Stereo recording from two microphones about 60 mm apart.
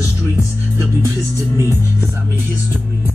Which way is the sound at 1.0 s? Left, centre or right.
Right.